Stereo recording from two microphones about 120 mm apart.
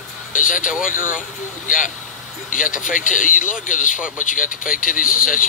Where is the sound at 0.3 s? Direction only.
90° left.